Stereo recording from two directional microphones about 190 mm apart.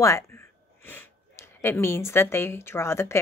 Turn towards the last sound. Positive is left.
turn(degrees=15)  # may be behind; listen again after turning